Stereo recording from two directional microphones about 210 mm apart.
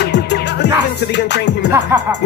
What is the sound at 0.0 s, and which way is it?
Music, 55° left (ahead or behind).